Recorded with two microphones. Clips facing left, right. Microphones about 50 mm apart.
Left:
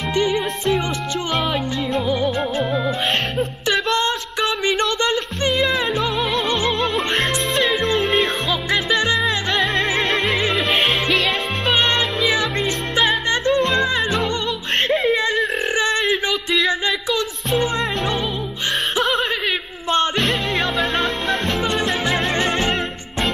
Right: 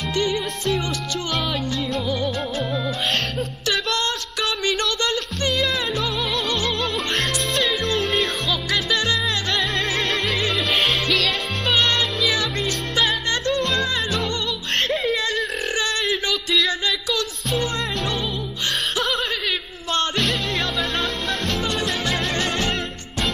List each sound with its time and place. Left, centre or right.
0.1 s music: left
2.0 s music: centre
3.3 s a sound: left
6.5 s music: left
7.2 s music: centre
11.6 s music: left
14.9 s a sound: centre
18.9 s snicker: left
20.2 s music: centre
21.5 s music: left